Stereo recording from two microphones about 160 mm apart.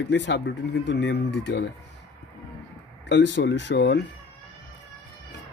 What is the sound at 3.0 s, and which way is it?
Speech, 90° left.